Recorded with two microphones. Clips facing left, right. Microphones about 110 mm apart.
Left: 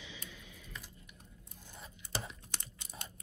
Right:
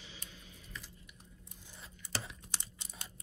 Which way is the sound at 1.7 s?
20° left (ahead or behind).